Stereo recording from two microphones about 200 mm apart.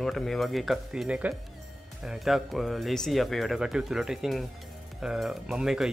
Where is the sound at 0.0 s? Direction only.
Centre (ahead or behind).